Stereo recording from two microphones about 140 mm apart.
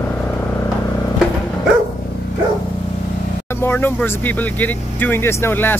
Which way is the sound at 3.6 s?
15° left (ahead or behind).